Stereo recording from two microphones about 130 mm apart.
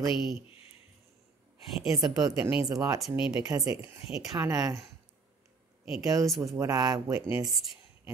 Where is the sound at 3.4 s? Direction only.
25° right (ahead or behind).